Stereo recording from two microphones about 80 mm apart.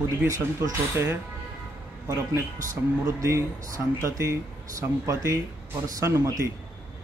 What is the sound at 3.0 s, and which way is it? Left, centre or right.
A man's voice, right.